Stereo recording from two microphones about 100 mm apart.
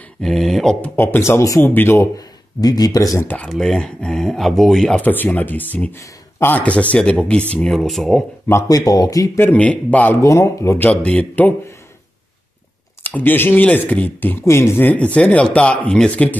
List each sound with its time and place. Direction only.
0.2 s speech: 5° left (ahead or behind)
0.9 s speech: 25° left (ahead or behind)
1.6 s speech: 20° left (ahead or behind)
2.1 s speech: 40° left (ahead or behind)
3.4 s speech: 5° left (ahead or behind)
5.0 s speech: 20° left (ahead or behind); by 8.2 s centre (ahead or behind)
8.5 s speech: 35° left (ahead or behind)
9.4 s speech: 15° left (ahead or behind)
10.2 s speech: 30° left (ahead or behind)
10.8 s speech: 10° left (ahead or behind)
13.0 s speech: 20° left (ahead or behind)